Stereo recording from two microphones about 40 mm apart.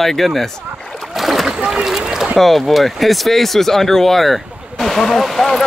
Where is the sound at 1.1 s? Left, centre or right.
Centre.